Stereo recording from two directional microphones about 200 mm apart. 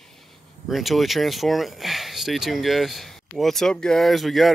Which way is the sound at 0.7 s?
Centre (ahead or behind).